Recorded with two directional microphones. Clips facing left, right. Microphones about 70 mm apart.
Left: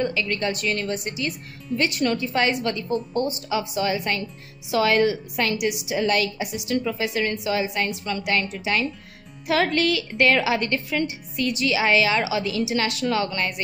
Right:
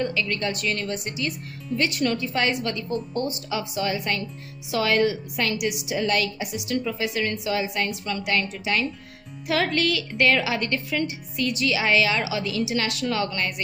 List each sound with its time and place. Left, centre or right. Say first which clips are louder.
0.0 s a woman's voice: left 1 dB; left